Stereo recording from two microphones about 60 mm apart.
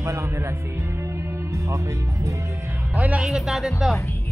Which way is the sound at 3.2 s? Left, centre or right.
Centre.